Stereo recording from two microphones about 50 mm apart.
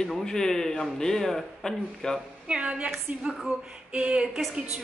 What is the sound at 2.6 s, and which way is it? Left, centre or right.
Speech, right.